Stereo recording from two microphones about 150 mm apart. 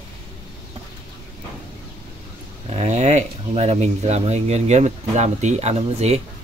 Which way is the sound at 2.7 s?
45° right (ahead or behind).